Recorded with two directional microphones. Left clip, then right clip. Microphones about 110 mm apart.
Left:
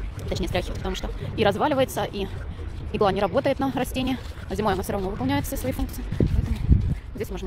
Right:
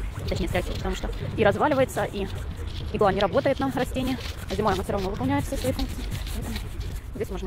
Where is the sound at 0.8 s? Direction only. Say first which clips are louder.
Even; 30° left (ahead or behind).